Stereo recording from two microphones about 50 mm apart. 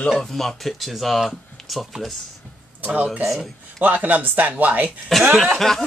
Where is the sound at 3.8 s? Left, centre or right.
Right.